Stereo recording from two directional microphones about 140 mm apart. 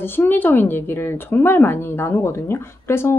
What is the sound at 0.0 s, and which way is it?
Speech, 15° left (ahead or behind).